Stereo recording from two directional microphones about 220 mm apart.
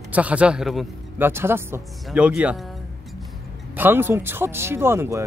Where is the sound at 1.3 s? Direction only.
10° right (ahead or behind).